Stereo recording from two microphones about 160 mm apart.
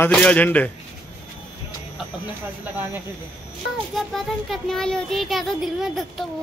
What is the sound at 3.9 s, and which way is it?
Child singing, centre (ahead or behind).